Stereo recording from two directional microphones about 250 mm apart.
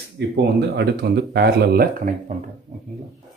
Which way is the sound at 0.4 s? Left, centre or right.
Right.